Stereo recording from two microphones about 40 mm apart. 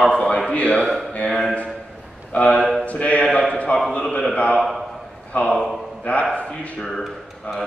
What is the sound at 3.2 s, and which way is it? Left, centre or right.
Speech, centre.